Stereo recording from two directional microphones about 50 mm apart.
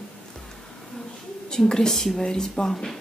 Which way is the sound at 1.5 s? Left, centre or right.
Centre.